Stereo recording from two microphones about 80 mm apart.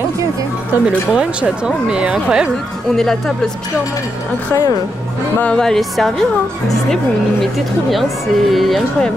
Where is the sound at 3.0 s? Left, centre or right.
Centre.